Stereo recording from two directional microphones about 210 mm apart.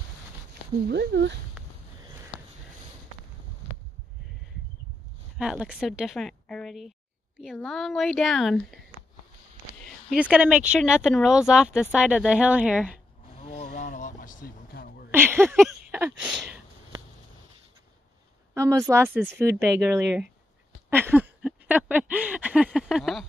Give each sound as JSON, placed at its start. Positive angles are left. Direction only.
{"t": 0.8, "sound": "speech", "side_deg": -55}
{"t": 5.4, "sound": "speech", "side_deg": -5}
{"t": 9.8, "sound": "speech", "side_deg": 0}
{"t": 13.4, "sound": "vehicle", "side_deg": 30}
{"t": 13.8, "sound": "a sound", "side_deg": 35}
{"t": 15.0, "sound": "speech", "side_deg": -10}
{"t": 15.9, "sound": "a sound", "side_deg": -10}
{"t": 18.5, "sound": "speech", "side_deg": -15}
{"t": 20.9, "sound": "a sound", "side_deg": -10}